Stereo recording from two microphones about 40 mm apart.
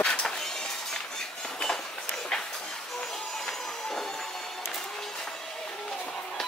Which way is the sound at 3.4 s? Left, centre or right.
Centre.